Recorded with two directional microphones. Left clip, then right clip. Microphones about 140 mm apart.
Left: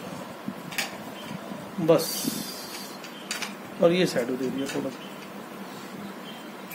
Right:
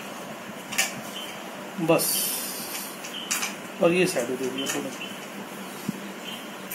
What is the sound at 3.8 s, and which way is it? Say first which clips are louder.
Speech: even; 45° left (ahead or behind).